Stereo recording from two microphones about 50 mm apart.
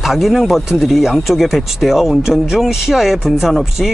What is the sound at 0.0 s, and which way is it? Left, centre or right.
Speech, centre.